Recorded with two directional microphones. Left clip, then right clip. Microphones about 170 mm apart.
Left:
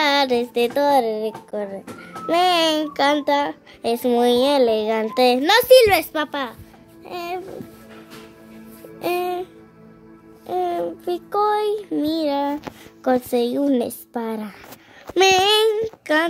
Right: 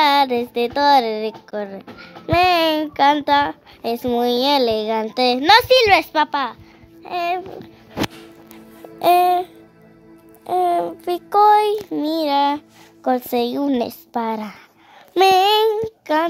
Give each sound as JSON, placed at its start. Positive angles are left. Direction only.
{"t": 0.0, "sound": "speech", "side_deg": -15}
{"t": 9.0, "sound": "music", "side_deg": -20}
{"t": 10.4, "sound": "speech", "side_deg": -15}